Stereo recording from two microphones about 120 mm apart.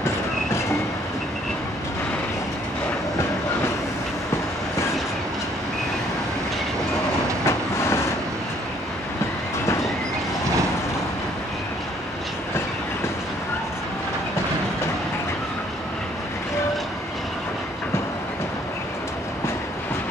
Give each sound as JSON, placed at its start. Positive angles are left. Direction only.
{"t": 7.4, "sound": "train", "side_deg": 20}